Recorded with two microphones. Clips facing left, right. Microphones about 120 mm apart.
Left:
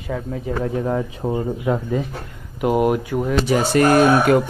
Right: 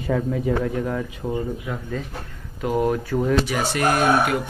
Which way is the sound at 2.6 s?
15° left (ahead or behind).